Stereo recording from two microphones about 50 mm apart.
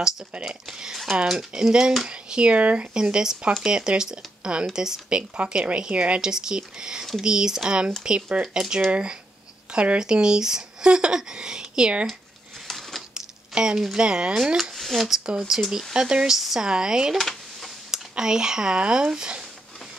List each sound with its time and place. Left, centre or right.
0.5 s speech: centre
3.0 s speech: centre
6.2 s speech: centre
12.6 s a sound: centre
13.1 s a sound: centre
13.9 s speech: centre
14.6 s speech: centre
15.0 s speech: centre
17.2 s a sound: centre
17.9 s speech: centre